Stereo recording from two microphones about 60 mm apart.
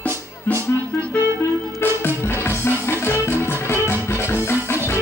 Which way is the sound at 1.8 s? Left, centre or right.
Left.